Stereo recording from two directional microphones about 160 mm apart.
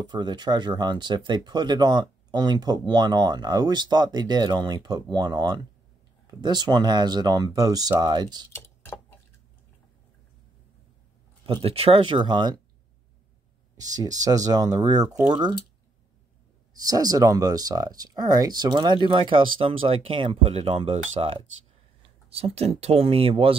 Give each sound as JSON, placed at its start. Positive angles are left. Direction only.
{"t": 0.0, "sound": "speech", "side_deg": -30}
{"t": 11.4, "sound": "speech", "side_deg": -35}
{"t": 13.7, "sound": "speech", "side_deg": -25}
{"t": 16.8, "sound": "speech", "side_deg": -25}